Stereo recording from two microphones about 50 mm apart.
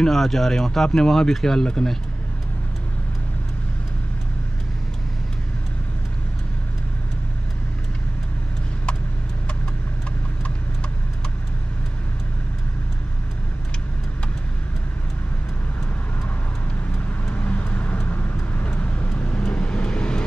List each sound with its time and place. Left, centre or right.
0.0 s speech: centre
17.3 s vehicle: left